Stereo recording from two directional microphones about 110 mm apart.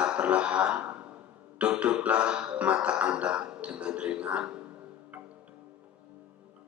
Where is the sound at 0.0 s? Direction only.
10° right (ahead or behind).